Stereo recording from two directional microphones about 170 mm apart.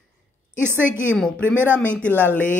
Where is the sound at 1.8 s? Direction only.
10° left (ahead or behind).